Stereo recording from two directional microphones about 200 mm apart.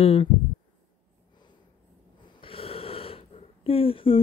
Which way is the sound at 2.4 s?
30° left (ahead or behind).